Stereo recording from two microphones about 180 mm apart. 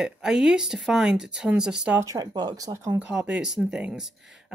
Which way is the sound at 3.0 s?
5° right (ahead or behind).